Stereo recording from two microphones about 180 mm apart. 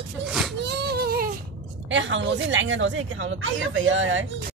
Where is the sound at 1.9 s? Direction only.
90° right.